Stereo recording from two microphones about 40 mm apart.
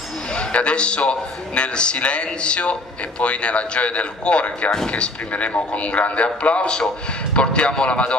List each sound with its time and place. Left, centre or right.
0.3 s a man's voice: left